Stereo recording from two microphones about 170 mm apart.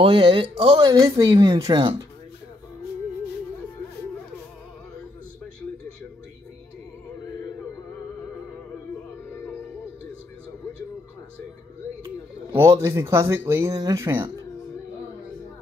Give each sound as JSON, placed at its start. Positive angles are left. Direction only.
{"t": 0.0, "sound": "speech", "side_deg": -30}
{"t": 12.6, "sound": "speech", "side_deg": -20}